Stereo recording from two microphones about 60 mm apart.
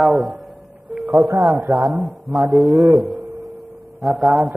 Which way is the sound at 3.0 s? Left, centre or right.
Right.